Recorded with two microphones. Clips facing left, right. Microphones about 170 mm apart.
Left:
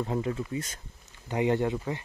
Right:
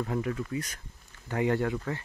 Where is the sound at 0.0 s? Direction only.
25° left (ahead or behind).